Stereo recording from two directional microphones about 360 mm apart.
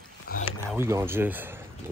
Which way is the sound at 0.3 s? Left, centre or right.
Left.